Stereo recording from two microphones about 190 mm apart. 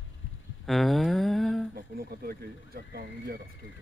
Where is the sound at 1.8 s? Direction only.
55° right (ahead or behind).